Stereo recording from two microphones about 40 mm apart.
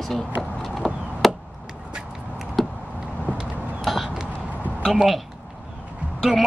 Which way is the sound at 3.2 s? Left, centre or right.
Right.